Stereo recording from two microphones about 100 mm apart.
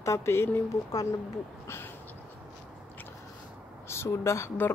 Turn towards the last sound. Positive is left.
turn(degrees=25)  # may be behind; listen again after turning